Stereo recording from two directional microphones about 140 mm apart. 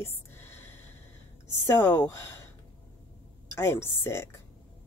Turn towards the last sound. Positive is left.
turn(degrees=20)  # may be behind; listen again after turning